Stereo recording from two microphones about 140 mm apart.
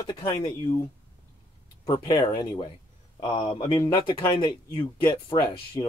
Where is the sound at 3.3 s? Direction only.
35° left (ahead or behind).